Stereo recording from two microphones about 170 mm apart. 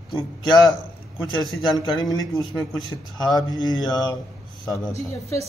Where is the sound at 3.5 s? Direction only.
25° left (ahead or behind).